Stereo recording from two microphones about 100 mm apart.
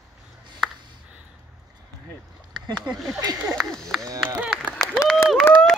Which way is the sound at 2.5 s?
45° right (ahead or behind).